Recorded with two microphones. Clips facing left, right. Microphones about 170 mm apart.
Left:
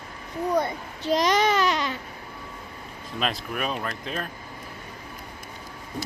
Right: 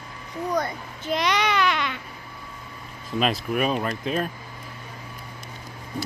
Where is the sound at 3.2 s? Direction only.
5° right (ahead or behind).